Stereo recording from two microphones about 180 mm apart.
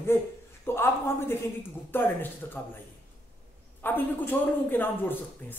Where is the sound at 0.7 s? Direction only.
10° left (ahead or behind).